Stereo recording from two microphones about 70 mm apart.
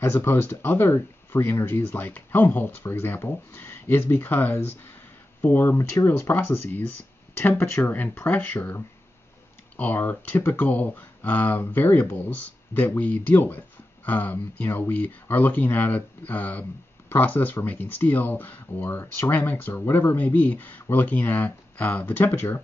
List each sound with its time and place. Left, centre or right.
0.0 s speech: left